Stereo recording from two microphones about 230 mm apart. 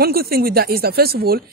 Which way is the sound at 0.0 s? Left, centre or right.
Right.